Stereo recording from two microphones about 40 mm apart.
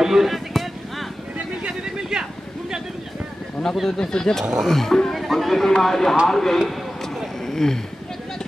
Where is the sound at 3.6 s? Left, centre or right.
Centre.